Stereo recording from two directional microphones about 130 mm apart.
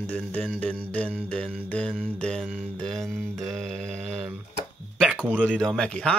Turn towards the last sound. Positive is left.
turn(degrees=5)  # may be behind; listen again after turning